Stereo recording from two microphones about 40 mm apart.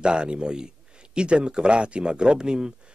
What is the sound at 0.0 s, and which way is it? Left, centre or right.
Speech, right.